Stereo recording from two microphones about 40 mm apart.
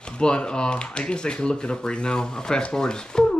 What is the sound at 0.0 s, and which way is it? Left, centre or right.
Speech, left.